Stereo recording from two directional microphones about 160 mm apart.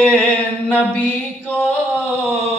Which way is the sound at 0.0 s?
5° left (ahead or behind).